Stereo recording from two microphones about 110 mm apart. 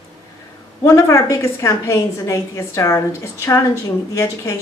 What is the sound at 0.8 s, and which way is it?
A woman's voice, 30° left (ahead or behind).